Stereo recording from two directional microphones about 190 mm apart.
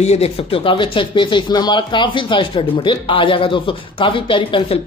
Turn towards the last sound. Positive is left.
turn(degrees=25)  # may be behind; listen again after turning